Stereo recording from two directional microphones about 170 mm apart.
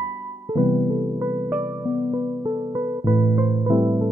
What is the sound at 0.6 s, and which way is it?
Music, 15° right (ahead or behind).